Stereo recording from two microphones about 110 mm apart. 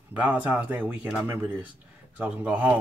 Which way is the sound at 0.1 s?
15° right (ahead or behind).